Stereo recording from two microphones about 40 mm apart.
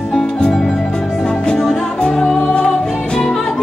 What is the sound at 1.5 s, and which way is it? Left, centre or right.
Music, centre.